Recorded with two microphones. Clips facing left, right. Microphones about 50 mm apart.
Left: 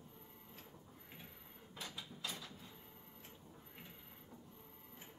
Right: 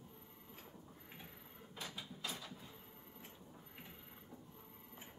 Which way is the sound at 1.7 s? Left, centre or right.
Centre.